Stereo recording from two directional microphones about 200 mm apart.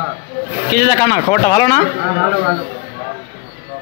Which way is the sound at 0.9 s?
30° left (ahead or behind).